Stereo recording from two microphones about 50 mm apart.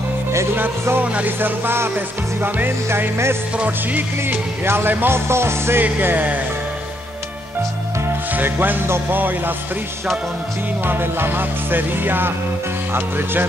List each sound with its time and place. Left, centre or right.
1.0 s music: right
1.4 s music: right
3.5 s music: right
4.6 s music: right
5.9 s music: right
8.4 s music: right
10.9 s music: right